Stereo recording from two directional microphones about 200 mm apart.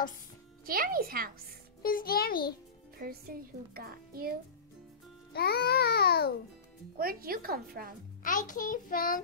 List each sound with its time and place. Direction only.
0.7 s a child's voice: 45° right (ahead or behind)
1.8 s a child's voice: 45° left (ahead or behind)
3.0 s a child's voice: 50° right (ahead or behind)
5.3 s a child's voice: 50° left (ahead or behind)
7.0 s a child's voice: 50° right (ahead or behind)
8.2 s a child's voice: 40° left (ahead or behind)